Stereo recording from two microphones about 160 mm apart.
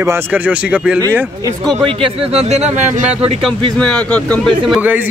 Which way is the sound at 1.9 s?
35° right (ahead or behind).